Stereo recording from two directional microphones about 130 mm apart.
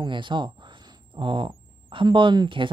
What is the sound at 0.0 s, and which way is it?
Speech, 35° right (ahead or behind).